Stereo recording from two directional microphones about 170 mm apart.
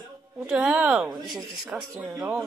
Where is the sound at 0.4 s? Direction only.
5° right (ahead or behind).